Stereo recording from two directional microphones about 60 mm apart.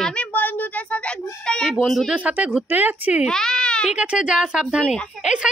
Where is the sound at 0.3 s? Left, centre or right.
Left; by 1.7 s centre.